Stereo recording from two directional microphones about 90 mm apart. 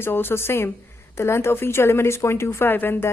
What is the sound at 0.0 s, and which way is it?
A woman's voice, 25° left (ahead or behind).